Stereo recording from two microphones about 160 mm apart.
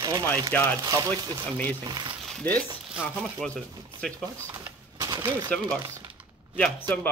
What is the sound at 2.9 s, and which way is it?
Speech, centre (ahead or behind).